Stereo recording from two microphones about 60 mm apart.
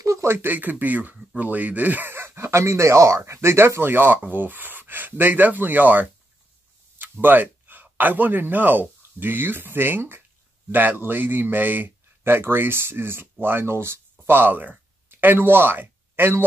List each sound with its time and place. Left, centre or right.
0.0 s a sound: right
0.4 s speech: right
2.1 s a man's voice: right